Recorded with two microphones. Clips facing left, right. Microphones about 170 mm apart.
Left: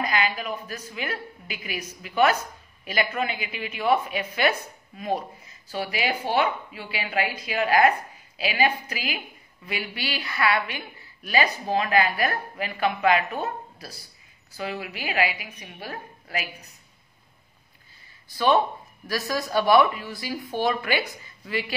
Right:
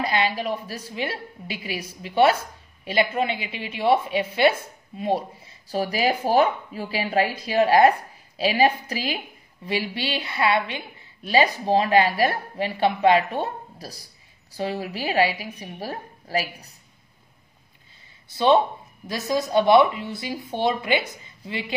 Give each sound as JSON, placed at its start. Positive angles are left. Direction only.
{"t": 0.0, "sound": "a woman's voice", "side_deg": -30}
{"t": 19.0, "sound": "speech", "side_deg": -20}